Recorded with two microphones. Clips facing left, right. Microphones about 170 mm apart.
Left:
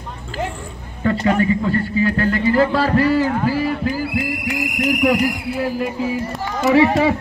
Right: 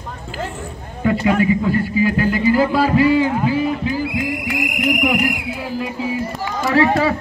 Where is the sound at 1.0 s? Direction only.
10° right (ahead or behind).